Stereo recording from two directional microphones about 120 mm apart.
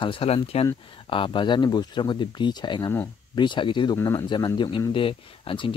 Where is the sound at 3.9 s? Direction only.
30° left (ahead or behind); by 5.8 s 45° left (ahead or behind).